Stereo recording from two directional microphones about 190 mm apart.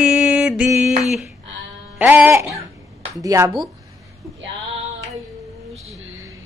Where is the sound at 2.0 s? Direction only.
10° right (ahead or behind).